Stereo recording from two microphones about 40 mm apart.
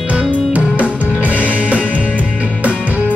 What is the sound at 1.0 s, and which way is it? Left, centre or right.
Music, right.